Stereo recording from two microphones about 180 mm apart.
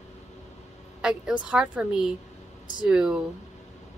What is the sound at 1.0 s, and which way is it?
Speech, 5° right (ahead or behind).